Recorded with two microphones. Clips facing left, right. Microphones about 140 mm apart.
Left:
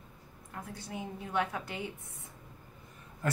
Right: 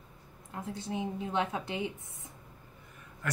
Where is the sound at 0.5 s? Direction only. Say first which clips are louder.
Right 5 dB; 20° right (ahead or behind).